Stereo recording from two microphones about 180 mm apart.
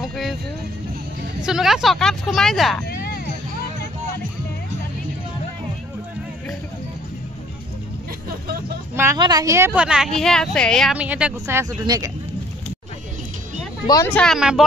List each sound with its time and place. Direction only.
0.1 s vehicle: centre (ahead or behind)
1.4 s speech: centre (ahead or behind)
8.9 s a woman's voice: 15° right (ahead or behind)
9.8 s speech: 5° right (ahead or behind)
11.8 s a woman's voice: 20° right (ahead or behind)
14.0 s speech: 5° left (ahead or behind)